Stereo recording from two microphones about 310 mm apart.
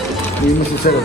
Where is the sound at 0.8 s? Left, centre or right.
Left.